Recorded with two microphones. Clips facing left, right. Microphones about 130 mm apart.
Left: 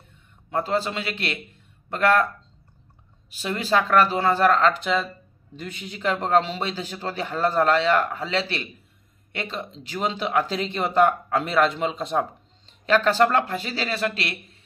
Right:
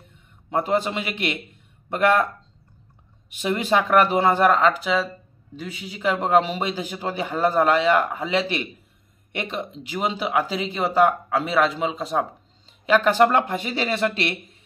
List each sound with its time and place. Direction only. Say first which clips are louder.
0.5 s speech: right 2 dB; 20° right (ahead or behind)
3.3 s speech: right 3 dB; 20° right (ahead or behind)